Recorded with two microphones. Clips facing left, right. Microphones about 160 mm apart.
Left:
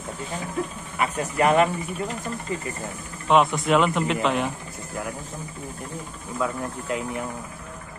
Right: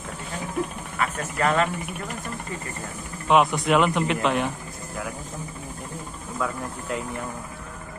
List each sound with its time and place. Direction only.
0.9 s speech: 15° left (ahead or behind)
3.3 s speech: centre (ahead or behind)
6.4 s speech: 5° left (ahead or behind)